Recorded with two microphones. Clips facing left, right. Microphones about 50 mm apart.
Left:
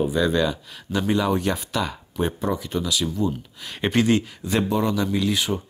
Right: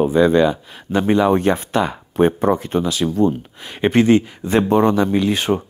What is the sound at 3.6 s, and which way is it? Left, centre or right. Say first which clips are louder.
Speech: right 6 dB; right.